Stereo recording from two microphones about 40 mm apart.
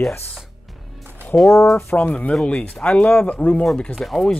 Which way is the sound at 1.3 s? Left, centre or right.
Left.